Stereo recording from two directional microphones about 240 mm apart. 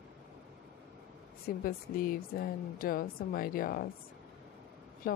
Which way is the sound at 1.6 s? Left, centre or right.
Left.